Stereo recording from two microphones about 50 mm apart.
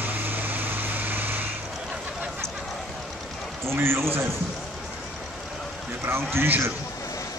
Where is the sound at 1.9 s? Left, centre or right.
Right.